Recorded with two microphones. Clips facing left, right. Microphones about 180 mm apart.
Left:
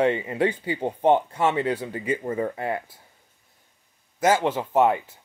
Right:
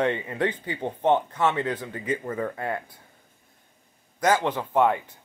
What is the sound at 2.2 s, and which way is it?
Speech, 20° left (ahead or behind).